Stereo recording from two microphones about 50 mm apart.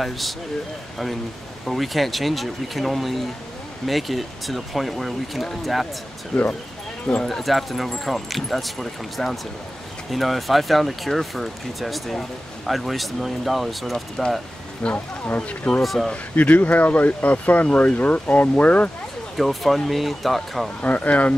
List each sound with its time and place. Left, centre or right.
1.7 s speech: centre
6.3 s speech: centre
7.2 s speech: centre
14.8 s speech: left
15.8 s speech: centre
16.1 s speech: left
19.3 s speech: centre
20.8 s speech: left